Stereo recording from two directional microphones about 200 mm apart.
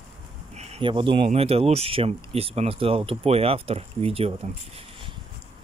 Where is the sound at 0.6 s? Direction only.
25° right (ahead or behind).